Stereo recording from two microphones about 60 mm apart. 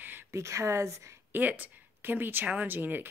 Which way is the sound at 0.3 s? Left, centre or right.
Right.